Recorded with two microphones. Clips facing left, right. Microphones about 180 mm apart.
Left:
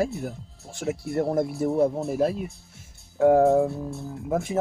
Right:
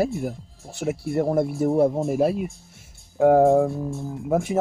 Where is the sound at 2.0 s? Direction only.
10° right (ahead or behind).